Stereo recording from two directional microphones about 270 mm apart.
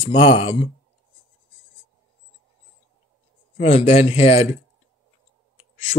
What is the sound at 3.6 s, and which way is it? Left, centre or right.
Speech, left.